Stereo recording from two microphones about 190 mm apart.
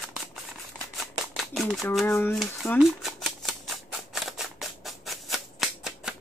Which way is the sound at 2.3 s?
Centre (ahead or behind).